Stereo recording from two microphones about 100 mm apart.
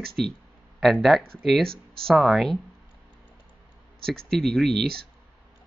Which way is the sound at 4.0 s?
5° left (ahead or behind).